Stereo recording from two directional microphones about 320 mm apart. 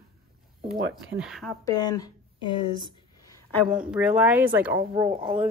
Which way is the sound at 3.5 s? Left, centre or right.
Centre.